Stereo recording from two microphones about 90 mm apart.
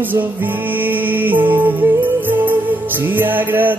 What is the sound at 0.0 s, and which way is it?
Music, 20° right (ahead or behind).